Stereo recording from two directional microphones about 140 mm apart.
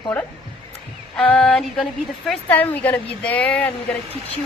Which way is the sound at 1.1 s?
5° left (ahead or behind).